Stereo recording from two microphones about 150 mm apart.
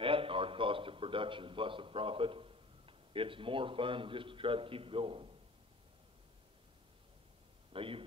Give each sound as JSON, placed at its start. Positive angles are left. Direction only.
{"t": 0.0, "sound": "a man's voice", "side_deg": -35}
{"t": 7.7, "sound": "speech", "side_deg": -35}